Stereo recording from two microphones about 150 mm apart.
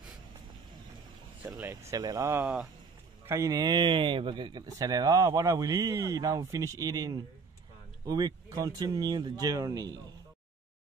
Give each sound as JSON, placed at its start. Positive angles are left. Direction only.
{"t": 1.6, "sound": "a man's voice", "side_deg": -20}
{"t": 2.4, "sound": "speech", "side_deg": -5}
{"t": 3.3, "sound": "a man's voice", "side_deg": -20}